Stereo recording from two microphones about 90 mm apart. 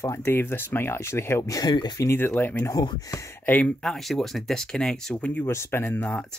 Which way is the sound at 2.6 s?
50° left (ahead or behind).